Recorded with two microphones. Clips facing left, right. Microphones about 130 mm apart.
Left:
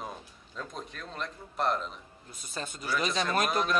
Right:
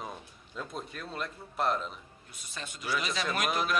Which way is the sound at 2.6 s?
35° left (ahead or behind).